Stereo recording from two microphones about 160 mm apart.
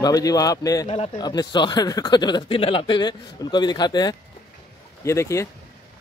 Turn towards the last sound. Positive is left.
turn(degrees=20)  # may be behind; listen again after turning